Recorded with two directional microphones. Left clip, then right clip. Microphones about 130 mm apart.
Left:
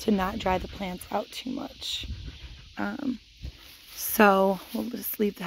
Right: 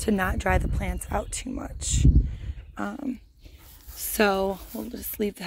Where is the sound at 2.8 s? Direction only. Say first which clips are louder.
Even; 30° left (ahead or behind).